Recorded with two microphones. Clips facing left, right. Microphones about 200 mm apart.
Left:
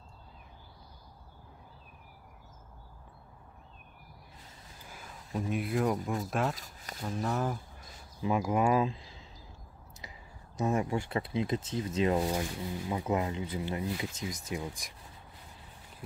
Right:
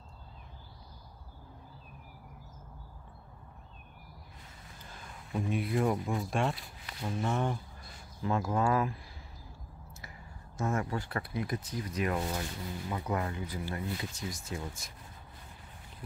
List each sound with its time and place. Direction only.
5.5 s speech: centre (ahead or behind)
6.5 s speech: 40° left (ahead or behind)
7.0 s speech: centre (ahead or behind)
8.2 s speech: 15° left (ahead or behind)
10.6 s speech: 20° left (ahead or behind)